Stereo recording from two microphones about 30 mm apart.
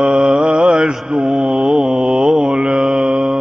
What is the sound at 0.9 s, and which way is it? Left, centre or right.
Mantra, centre.